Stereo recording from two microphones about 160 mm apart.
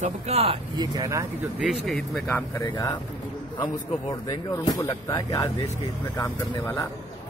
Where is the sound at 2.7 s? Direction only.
25° left (ahead or behind).